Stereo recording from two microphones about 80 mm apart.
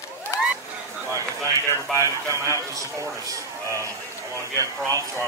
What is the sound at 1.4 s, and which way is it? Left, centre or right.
Speech, left.